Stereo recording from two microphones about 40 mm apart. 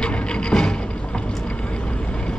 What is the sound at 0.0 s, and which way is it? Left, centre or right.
Music, left.